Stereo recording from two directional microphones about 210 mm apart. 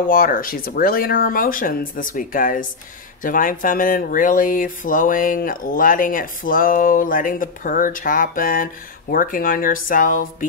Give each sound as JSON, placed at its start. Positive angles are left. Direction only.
{"t": 0.1, "sound": "speech", "side_deg": 40}